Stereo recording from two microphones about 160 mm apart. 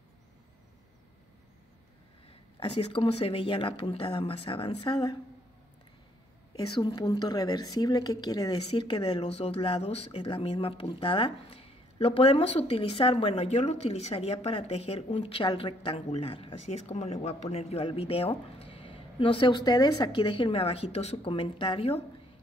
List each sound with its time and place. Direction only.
2.6 s speech: 35° left (ahead or behind)
6.8 s speech: 25° left (ahead or behind)